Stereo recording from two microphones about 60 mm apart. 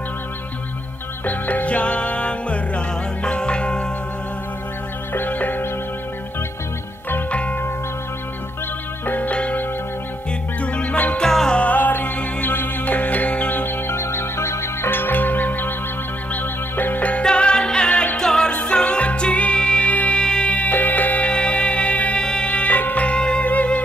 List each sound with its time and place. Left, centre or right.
1.2 s music: left
5.1 s music: left
7.2 s music: left
9.0 s music: left
9.3 s music: centre
10.6 s music: left
11.1 s music: centre
11.5 s music: left
17.2 s music: centre
18.2 s music: centre
20.7 s music: left; by 22.5 s centre
22.5 s music: left